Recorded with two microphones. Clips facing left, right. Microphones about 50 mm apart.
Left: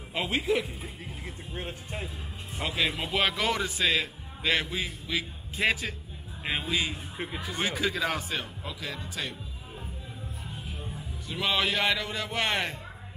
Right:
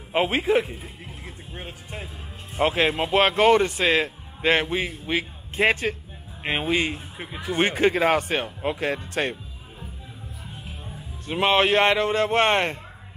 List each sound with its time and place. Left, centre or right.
0.1 s a man's voice: right
1.6 s speech: centre
2.5 s a man's voice: right
11.2 s a man's voice: right